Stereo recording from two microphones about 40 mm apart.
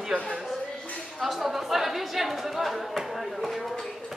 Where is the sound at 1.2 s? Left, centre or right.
Centre.